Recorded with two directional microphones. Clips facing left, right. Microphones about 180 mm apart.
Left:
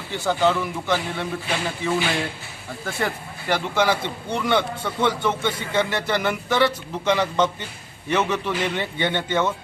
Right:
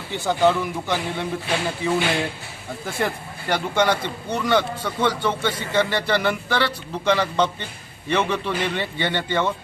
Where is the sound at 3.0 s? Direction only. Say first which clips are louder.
Right 2 dB; 5° left (ahead or behind).